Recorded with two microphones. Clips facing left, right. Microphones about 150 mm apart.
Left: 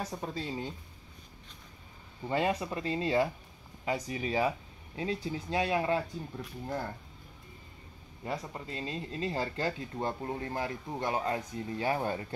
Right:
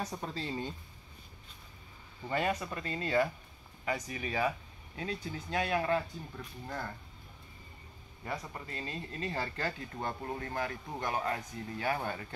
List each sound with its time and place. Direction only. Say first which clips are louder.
0.2 s speech: left 1 dB; 10° left (ahead or behind)
2.2 s speech: left 3 dB; 25° left (ahead or behind)
8.2 s speech: left 3 dB; 20° left (ahead or behind)